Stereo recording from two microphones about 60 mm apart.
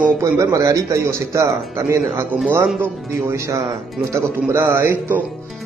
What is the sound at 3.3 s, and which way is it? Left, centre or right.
Speech, right.